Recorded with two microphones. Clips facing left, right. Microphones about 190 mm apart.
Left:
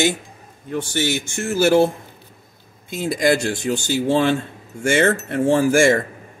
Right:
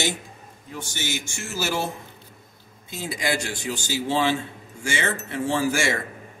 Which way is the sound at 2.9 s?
50° left (ahead or behind).